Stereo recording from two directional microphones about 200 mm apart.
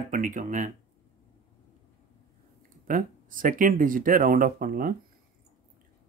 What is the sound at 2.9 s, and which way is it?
Speech, 45° right (ahead or behind).